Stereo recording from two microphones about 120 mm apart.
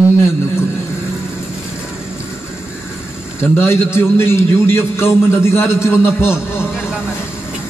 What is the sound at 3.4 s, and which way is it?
A man's voice, 20° left (ahead or behind).